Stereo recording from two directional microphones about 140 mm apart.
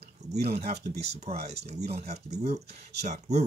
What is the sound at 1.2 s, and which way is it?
Speech, 50° right (ahead or behind).